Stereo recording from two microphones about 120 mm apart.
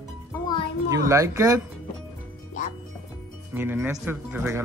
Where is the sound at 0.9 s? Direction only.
25° right (ahead or behind).